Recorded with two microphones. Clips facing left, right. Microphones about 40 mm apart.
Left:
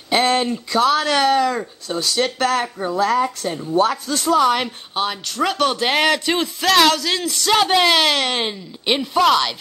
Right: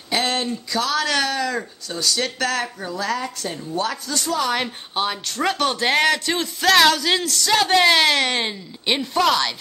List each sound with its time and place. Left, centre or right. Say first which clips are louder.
0.5 s a woman's voice: left 6 dB; left; by 4.6 s centre
4.9 s speech: left 1 dB; centre
7.2 s speech: left 6 dB; centre
7.8 s speech: even; centre